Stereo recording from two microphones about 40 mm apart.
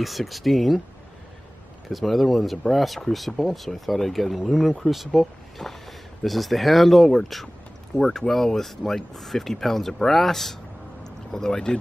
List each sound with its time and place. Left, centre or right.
0.0 s speech: centre
1.9 s speech: centre